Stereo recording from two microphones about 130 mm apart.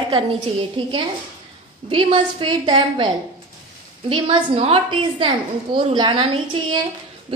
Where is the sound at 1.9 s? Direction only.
35° right (ahead or behind).